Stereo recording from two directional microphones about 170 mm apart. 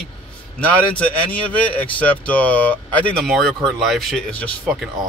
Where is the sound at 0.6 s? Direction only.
10° left (ahead or behind).